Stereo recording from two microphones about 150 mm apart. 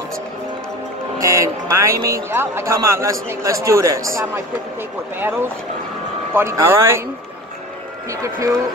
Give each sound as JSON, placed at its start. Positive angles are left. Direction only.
{"t": 1.1, "sound": "a man's voice", "side_deg": -20}
{"t": 6.3, "sound": "speech", "side_deg": -15}
{"t": 8.1, "sound": "a man's voice", "side_deg": -20}